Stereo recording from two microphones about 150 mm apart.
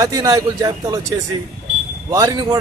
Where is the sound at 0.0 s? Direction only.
25° right (ahead or behind).